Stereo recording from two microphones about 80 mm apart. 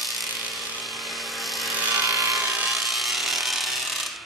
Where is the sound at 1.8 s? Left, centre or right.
Right.